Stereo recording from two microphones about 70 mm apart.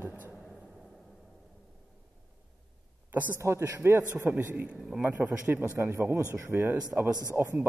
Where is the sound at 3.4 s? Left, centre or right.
Right.